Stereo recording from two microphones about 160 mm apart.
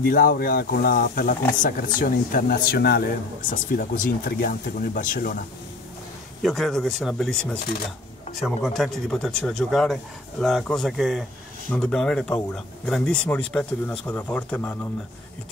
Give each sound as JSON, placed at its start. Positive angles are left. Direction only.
{"t": 0.0, "sound": "speech", "side_deg": 65}
{"t": 6.4, "sound": "speech", "side_deg": 0}